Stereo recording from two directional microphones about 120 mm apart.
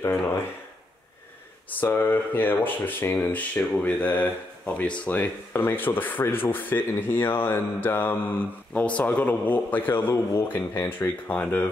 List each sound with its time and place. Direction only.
1.8 s speech: 15° left (ahead or behind)